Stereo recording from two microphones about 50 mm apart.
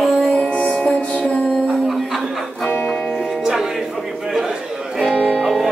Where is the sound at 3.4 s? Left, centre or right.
Centre.